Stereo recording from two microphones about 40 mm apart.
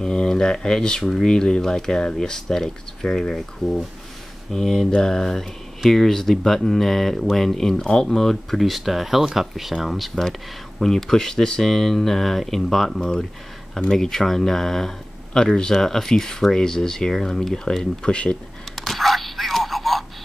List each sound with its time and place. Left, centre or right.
0.0 s speech: centre
4.5 s speech: centre
10.8 s speech: centre
18.0 s speech: left
18.8 s a sound: centre